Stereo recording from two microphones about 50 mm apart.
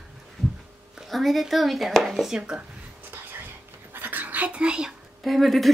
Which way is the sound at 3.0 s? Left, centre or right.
Right.